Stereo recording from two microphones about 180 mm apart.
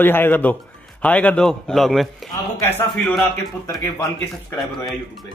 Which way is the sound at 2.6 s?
10° left (ahead or behind).